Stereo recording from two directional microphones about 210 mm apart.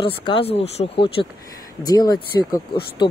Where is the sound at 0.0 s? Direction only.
25° left (ahead or behind).